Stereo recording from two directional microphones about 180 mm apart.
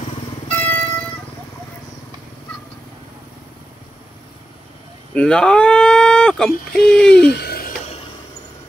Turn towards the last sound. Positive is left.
turn(degrees=60)  # may be behind; listen again after turning